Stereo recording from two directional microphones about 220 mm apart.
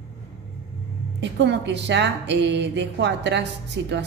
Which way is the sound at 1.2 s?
50° right (ahead or behind).